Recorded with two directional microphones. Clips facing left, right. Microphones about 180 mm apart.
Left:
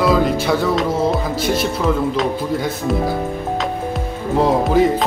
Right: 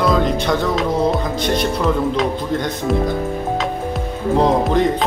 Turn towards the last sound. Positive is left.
turn(degrees=0)  # may be behind; listen again after turning